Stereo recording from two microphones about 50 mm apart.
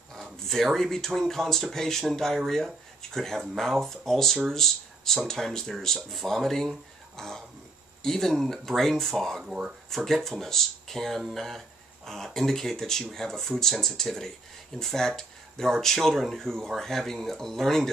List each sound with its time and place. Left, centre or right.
0.1 s speech: centre
9.4 s speech: centre
9.8 s speech: centre